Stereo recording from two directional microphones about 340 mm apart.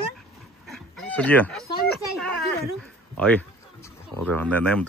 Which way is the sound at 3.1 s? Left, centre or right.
Centre.